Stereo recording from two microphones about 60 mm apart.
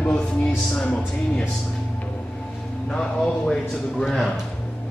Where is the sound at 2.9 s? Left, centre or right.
Centre.